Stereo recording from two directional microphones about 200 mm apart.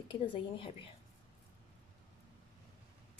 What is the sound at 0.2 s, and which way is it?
Speech, 25° left (ahead or behind).